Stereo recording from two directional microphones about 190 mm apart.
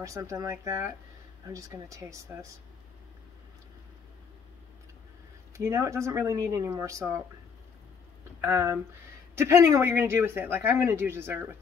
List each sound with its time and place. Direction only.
0.0 s speech: 15° right (ahead or behind)
5.6 s speech: 15° right (ahead or behind)
8.4 s speech: 15° right (ahead or behind)